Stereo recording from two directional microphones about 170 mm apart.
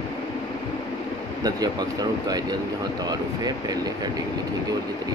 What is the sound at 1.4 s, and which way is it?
Speech, 25° right (ahead or behind).